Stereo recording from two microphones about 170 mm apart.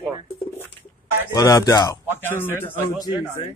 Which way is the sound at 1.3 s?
20° left (ahead or behind).